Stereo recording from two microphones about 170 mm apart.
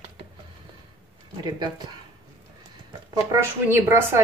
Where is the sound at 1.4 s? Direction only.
25° right (ahead or behind).